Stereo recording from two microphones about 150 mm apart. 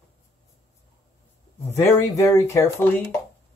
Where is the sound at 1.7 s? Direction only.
15° left (ahead or behind).